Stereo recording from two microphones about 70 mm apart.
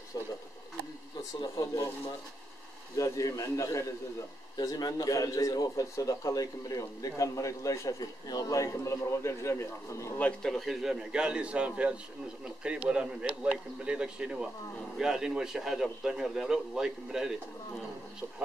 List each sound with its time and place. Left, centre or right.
1.4 s speech: left
3.0 s a man's voice: left
4.6 s a man's voice: left
8.0 s a man's voice: left
10.4 s a man's voice: centre
10.7 s a man's voice: centre